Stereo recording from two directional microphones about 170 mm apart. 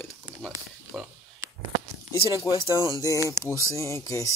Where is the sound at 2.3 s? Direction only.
20° left (ahead or behind).